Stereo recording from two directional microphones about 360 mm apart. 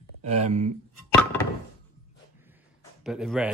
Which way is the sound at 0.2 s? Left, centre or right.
Centre.